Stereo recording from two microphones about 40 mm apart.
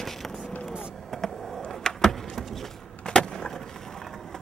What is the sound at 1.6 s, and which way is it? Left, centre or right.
Vehicle, centre.